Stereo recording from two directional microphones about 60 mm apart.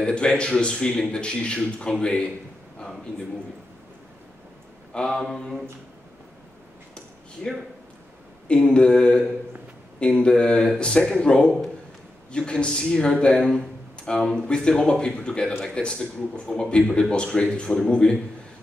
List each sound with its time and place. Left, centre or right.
0.0 s speech: centre
4.9 s speech: centre
8.5 s speech: centre